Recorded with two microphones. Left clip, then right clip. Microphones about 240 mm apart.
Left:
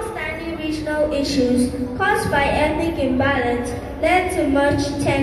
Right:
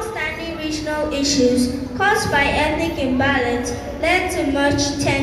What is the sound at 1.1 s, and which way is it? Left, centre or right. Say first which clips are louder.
A woman's voice: right 2 dB; centre.